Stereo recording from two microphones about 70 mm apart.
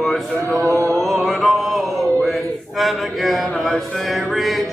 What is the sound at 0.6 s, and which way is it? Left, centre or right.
Mantra, right.